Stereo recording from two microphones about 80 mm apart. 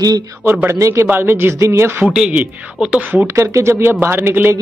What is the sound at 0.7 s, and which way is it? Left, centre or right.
Speech, right.